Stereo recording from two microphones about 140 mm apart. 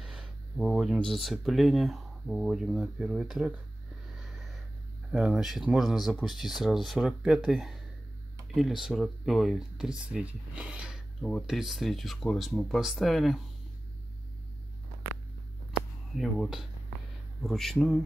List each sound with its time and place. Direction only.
0.0 s speech: 5° right (ahead or behind)
5.1 s speech: centre (ahead or behind)
11.1 s speech: 5° left (ahead or behind)
16.2 s speech: centre (ahead or behind)